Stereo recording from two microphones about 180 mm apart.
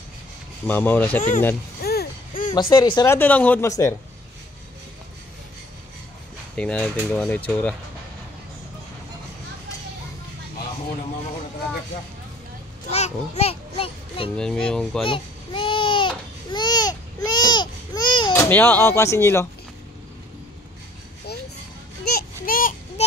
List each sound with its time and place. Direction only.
0.7 s speech: 10° left (ahead or behind)
1.8 s a sound: 60° left (ahead or behind)
2.7 s speech: 20° left (ahead or behind)
3.2 s speech: 10° left (ahead or behind)
6.5 s speech: 5° left (ahead or behind)
12.9 s children playing: 35° left (ahead or behind)
14.3 s speech: 5° left (ahead or behind)
15.0 s babbling: 30° left (ahead or behind)
18.4 s speech: 10° left (ahead or behind)
22.1 s a sound: 50° left (ahead or behind)